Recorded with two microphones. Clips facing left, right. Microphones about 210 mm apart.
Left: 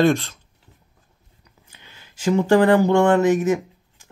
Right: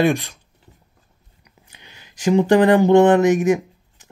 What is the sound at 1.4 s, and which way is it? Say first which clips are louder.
Speech: right 2 dB; 15° right (ahead or behind).